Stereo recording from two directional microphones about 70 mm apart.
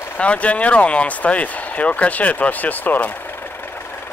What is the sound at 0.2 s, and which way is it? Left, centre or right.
Speech, centre.